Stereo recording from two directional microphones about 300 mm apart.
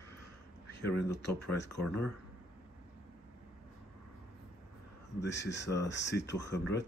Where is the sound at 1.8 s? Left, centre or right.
Centre.